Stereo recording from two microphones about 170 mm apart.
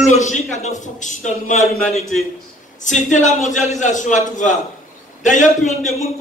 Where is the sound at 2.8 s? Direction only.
45° left (ahead or behind).